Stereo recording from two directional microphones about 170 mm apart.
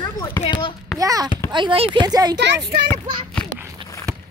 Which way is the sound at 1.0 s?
20° right (ahead or behind).